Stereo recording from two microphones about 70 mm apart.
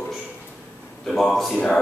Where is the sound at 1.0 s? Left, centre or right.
Centre.